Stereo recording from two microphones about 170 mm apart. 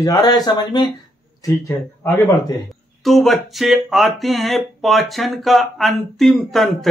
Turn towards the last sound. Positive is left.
turn(degrees=0)  # may be behind; listen again after turning